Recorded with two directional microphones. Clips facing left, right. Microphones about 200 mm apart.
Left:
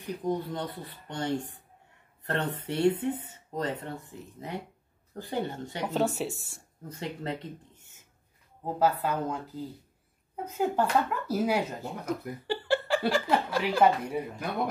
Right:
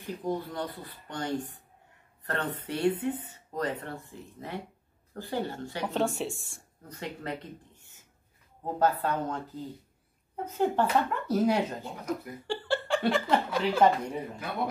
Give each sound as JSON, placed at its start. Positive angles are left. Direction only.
{"t": 0.0, "sound": "speech", "side_deg": 20}
{"t": 5.9, "sound": "speech", "side_deg": 0}
{"t": 6.9, "sound": "speech", "side_deg": 25}
{"t": 8.6, "sound": "speech", "side_deg": 5}